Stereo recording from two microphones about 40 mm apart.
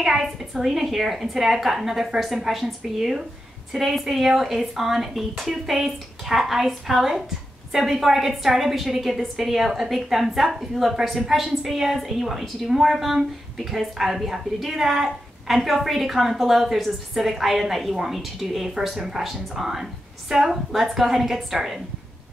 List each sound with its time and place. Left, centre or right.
0.0 s a woman's voice: centre